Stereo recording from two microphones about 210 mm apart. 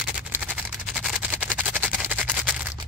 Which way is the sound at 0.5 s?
5° right (ahead or behind).